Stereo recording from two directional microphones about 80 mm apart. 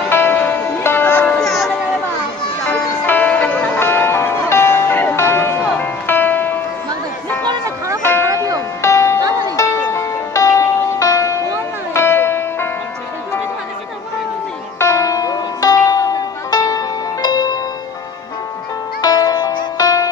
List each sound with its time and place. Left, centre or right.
0.1 s music: left
1.4 s music: centre
2.7 s music: left
8.0 s music: left
11.9 s music: left
14.8 s zither: left
18.9 s music: left